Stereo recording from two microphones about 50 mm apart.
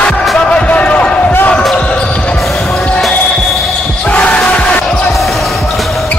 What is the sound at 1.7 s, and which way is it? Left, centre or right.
Basketball bounce, left.